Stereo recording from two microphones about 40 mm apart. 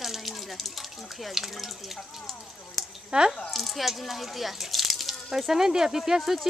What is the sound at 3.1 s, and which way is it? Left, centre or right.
Speech, right.